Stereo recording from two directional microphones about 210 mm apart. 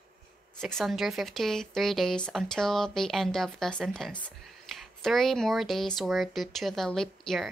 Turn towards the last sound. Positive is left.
turn(degrees=0)  # may be behind; listen again after turning